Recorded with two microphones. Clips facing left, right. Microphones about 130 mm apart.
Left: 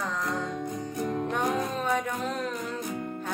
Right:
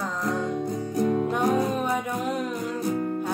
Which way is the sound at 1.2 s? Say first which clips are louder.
Right 5 dB; 10° right (ahead or behind).